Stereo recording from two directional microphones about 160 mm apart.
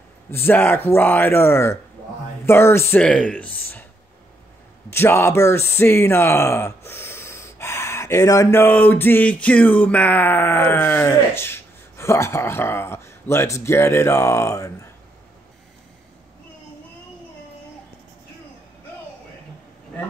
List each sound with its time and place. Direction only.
0.3 s speech: 15° left (ahead or behind)
4.9 s speech: 15° left (ahead or behind)